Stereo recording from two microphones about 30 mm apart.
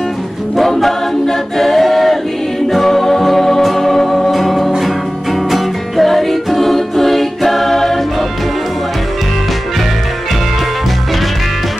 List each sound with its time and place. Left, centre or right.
0.6 s a capella: centre
2.7 s music: centre